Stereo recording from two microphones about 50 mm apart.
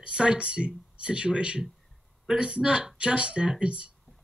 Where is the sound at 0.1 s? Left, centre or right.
Centre.